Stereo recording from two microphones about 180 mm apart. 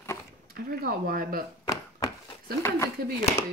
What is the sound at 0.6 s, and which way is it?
Speech, 55° right (ahead or behind).